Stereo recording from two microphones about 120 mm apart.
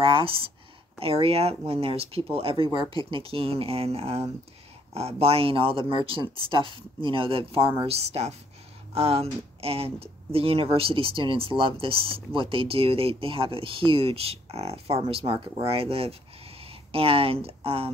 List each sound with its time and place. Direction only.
0.0 s speech: 50° right (ahead or behind)